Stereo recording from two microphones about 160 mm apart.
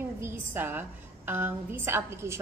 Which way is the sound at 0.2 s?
15° right (ahead or behind).